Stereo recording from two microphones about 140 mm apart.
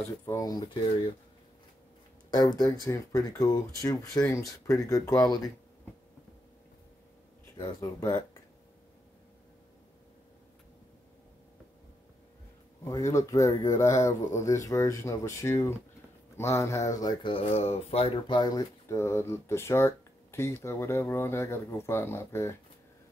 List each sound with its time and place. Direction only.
0.2 s speech: 25° left (ahead or behind)
2.3 s speech: 25° left (ahead or behind)
7.5 s speech: 25° left (ahead or behind)
12.8 s speech: 20° left (ahead or behind)
17.0 s speech: 30° left (ahead or behind); by 18.1 s 50° left (ahead or behind)
18.3 s speech: 25° left (ahead or behind)